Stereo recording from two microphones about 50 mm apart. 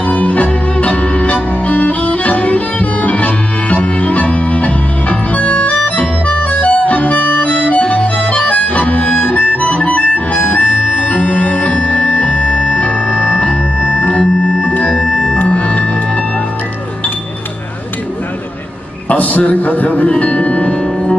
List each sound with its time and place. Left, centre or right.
0.0 s music: left
5.3 s accordion: left
7.8 s music: left
19.0 s music: left